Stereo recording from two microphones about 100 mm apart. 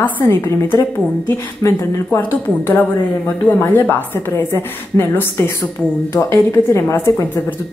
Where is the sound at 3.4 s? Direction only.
20° left (ahead or behind).